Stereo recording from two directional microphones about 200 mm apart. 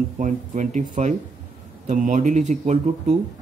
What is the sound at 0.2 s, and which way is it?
Speech, 40° right (ahead or behind).